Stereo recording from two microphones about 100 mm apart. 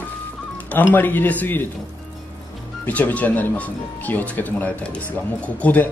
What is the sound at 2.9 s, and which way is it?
Speech, 15° left (ahead or behind).